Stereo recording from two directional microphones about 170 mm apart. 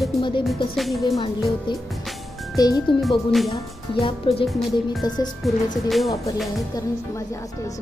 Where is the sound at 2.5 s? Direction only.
20° left (ahead or behind).